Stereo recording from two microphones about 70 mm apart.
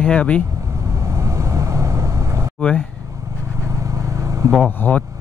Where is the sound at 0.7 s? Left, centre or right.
Right.